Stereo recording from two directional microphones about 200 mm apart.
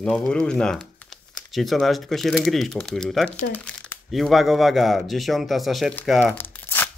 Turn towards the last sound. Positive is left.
turn(degrees=10)  # may be behind; listen again after turning